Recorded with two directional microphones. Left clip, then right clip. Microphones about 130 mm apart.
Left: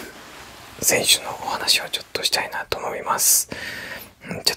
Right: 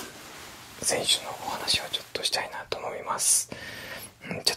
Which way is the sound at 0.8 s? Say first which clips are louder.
Left 7 dB; 50° left (ahead or behind).